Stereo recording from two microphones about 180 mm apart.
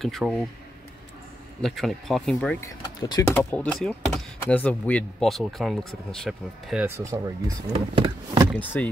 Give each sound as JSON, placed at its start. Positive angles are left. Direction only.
{"t": 0.0, "sound": "speech", "side_deg": 0}
{"t": 1.6, "sound": "speech", "side_deg": 0}
{"t": 2.6, "sound": "speech", "side_deg": 20}
{"t": 3.3, "sound": "speech", "side_deg": 10}
{"t": 7.0, "sound": "speech", "side_deg": -20}
{"t": 7.7, "sound": "speech", "side_deg": -30}
{"t": 8.8, "sound": "speech", "side_deg": 10}